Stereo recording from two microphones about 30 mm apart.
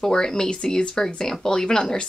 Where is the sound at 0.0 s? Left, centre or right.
Centre.